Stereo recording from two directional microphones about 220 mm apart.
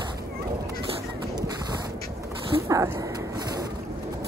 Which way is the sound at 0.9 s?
20° right (ahead or behind).